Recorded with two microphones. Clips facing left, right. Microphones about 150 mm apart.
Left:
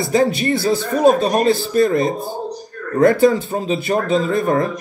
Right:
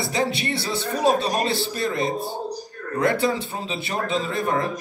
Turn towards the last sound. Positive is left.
turn(degrees=45)  # may be behind; listen again after turning